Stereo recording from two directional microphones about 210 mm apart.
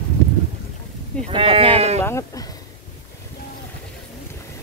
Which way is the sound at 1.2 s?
25° right (ahead or behind).